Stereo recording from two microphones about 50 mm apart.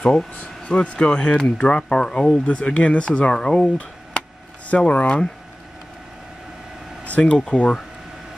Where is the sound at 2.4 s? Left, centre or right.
Left.